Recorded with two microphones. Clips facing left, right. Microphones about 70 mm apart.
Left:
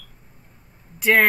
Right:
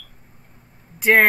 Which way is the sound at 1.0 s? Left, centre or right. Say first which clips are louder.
Right 2 dB; centre.